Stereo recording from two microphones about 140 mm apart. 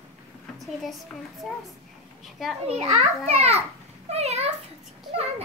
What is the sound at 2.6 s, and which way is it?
A child's voice, 45° right (ahead or behind).